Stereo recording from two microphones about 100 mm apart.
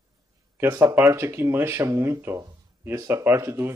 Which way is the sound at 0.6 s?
20° right (ahead or behind).